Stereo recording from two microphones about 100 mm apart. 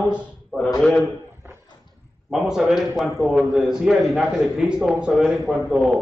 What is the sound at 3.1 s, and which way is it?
Speech, 20° right (ahead or behind).